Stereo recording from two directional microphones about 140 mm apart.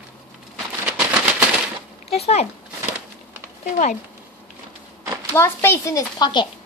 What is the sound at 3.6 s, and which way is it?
Speech, 60° left (ahead or behind).